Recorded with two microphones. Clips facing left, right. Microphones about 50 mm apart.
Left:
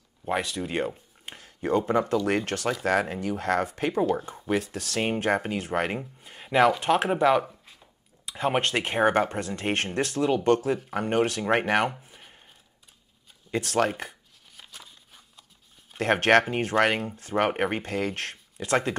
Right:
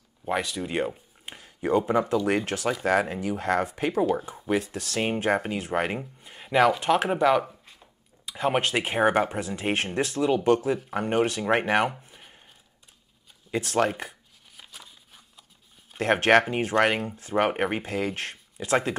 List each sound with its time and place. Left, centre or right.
0.2 s speech: centre
13.5 s speech: centre
14.6 s a sound: centre
15.9 s speech: centre